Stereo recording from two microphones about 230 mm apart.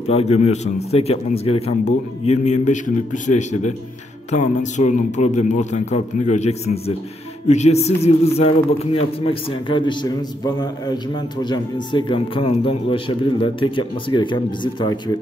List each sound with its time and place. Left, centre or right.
0.0 s a man's voice: left